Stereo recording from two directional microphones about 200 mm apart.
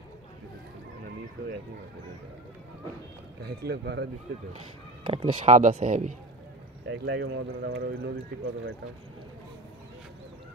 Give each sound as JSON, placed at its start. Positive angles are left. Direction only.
{"t": 3.4, "sound": "speech", "side_deg": -55}
{"t": 5.0, "sound": "speech", "side_deg": -30}
{"t": 6.9, "sound": "speech", "side_deg": -60}